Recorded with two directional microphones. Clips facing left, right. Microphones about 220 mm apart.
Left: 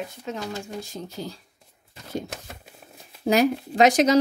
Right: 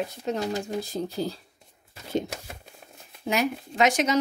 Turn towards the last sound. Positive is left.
turn(degrees=35)  # may be behind; listen again after turning